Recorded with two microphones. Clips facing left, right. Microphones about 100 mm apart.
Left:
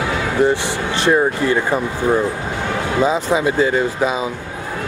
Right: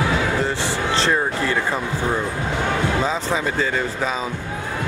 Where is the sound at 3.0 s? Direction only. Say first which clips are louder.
Left 6 dB; 10° left (ahead or behind).